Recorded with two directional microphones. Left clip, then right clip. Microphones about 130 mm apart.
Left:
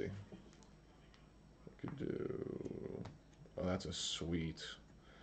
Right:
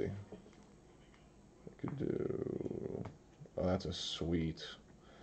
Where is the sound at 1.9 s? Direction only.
15° left (ahead or behind).